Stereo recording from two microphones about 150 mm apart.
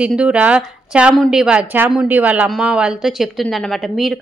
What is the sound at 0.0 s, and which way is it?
A woman's voice, 5° right (ahead or behind).